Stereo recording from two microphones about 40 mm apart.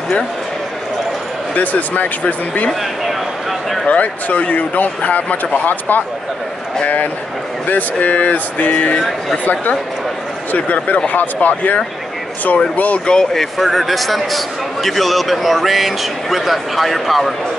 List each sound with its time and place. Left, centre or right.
1.5 s speech: left
3.8 s speech: left
7.6 s speech: left
13.0 s speech: left
13.3 s a man's voice: centre